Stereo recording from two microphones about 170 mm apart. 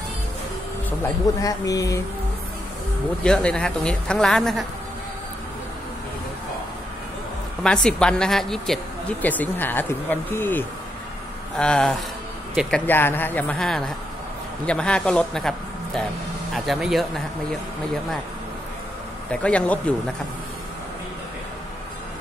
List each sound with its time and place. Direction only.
1.4 s speech: 20° left (ahead or behind)
3.3 s speech: 5° left (ahead or behind)
7.6 s a man's voice: 5° left (ahead or behind)
19.3 s speech: 5° left (ahead or behind)